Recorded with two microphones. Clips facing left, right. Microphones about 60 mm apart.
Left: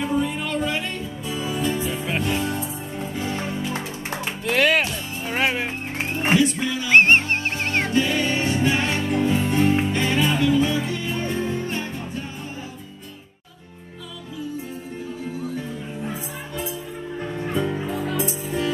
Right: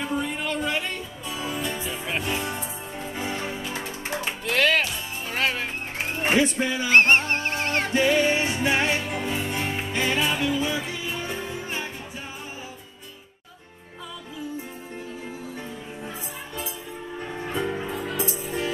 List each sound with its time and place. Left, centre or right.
0.0 s music: centre
3.1 s music: centre
4.5 s music: centre
6.3 s a sound: right
6.9 s music: left
7.9 s music: right
17.3 s music: centre